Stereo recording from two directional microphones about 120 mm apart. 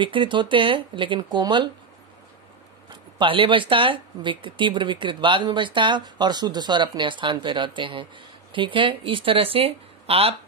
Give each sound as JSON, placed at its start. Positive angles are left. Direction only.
{"t": 0.0, "sound": "speech", "side_deg": -45}
{"t": 2.9, "sound": "speech", "side_deg": -45}